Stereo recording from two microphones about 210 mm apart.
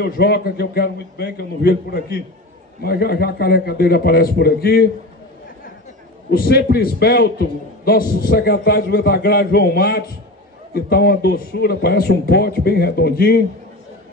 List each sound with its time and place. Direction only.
0.0 s a man's voice: 50° left (ahead or behind)
6.3 s a man's voice: 50° left (ahead or behind)